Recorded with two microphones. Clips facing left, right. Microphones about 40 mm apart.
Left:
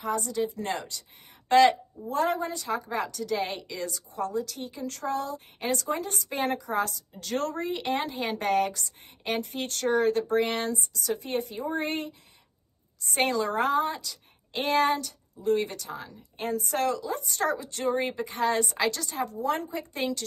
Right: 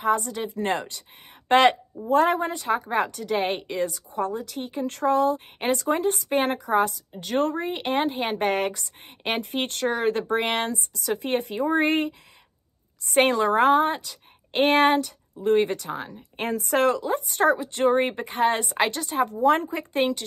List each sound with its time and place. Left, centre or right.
0.0 s a woman's voice: right
7.1 s a woman's voice: right
17.3 s a woman's voice: right